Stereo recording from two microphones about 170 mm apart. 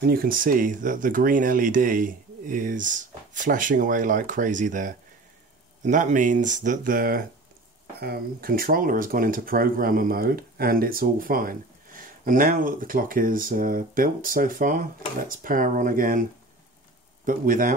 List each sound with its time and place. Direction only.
0.0 s speech: 60° right (ahead or behind)